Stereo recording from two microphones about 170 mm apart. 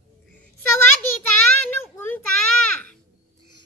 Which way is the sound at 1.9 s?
10° left (ahead or behind).